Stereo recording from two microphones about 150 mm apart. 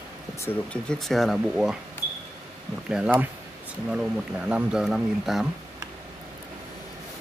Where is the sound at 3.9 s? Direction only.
5° right (ahead or behind).